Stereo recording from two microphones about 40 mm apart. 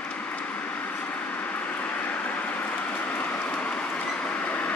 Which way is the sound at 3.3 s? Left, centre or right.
Left.